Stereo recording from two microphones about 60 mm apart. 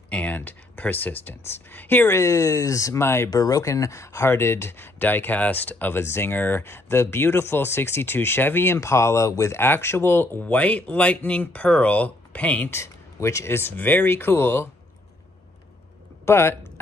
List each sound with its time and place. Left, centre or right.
0.1 s speech: left
2.0 s speech: left
3.0 s speech: left
3.3 s speech: left
8.7 s speech: left
9.5 s speech: left
10.4 s speech: left
12.6 s speech: left
13.7 s speech: left
16.3 s speech: left